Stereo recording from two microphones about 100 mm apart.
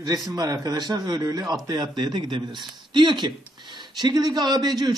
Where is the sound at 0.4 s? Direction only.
40° right (ahead or behind).